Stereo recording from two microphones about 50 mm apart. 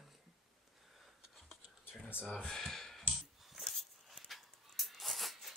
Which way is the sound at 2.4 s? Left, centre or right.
Centre.